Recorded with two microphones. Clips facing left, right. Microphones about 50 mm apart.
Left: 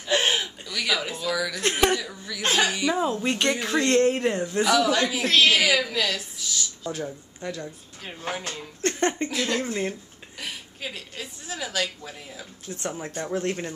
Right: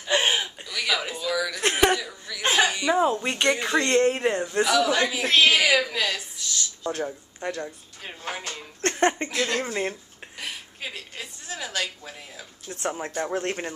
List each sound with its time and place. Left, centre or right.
0.0 s gasp: centre
1.6 s speech: centre
2.0 s a man's voice: centre
2.4 s a man's voice: centre
6.3 s a sound: centre
7.4 s a woman's voice: right
8.9 s a sound: centre
9.3 s speech: centre
9.6 s speech: right
10.3 s a sound: centre
12.8 s speech: centre